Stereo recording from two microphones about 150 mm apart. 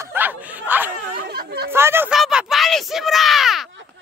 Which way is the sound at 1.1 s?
85° right.